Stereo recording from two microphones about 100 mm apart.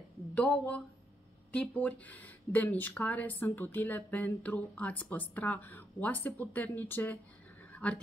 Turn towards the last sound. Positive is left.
turn(degrees=15)  # may be behind; listen again after turning